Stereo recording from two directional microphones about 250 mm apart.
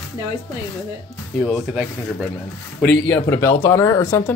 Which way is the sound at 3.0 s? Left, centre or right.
Centre.